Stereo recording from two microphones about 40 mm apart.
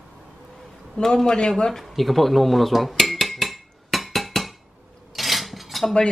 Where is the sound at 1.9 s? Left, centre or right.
Centre.